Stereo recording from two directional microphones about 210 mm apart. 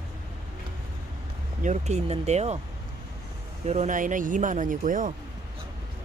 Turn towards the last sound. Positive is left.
turn(degrees=-40)  # may be behind; listen again after turning